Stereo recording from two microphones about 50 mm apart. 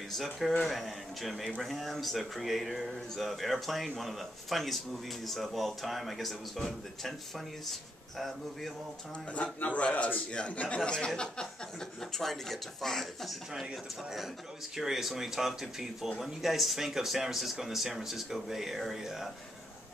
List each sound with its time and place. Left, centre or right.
0.1 s speech: centre
9.3 s a man's voice: left
12.0 s speech: centre
14.8 s speech: centre